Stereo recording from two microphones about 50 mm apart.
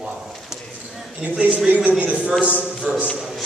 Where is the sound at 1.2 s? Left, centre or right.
Right.